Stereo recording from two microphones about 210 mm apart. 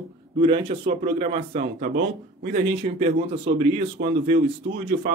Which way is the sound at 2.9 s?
25° right (ahead or behind).